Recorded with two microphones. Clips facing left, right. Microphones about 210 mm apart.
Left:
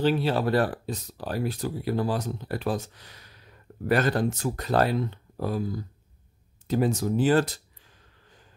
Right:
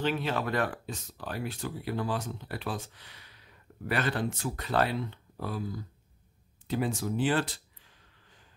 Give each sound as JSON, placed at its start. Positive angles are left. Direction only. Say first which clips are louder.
{"t": 0.0, "sound": "speech", "louder": "left 6 dB", "side_deg": 35}